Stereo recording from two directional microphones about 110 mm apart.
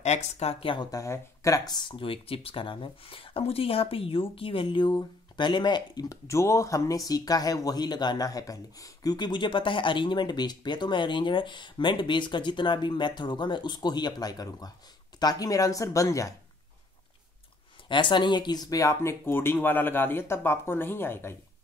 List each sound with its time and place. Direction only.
0.0 s speech: 80° left; by 0.7 s 65° left (ahead or behind)
0.7 s speech: 30° left (ahead or behind)
17.8 s speech: 45° left (ahead or behind); by 21.4 s 20° left (ahead or behind)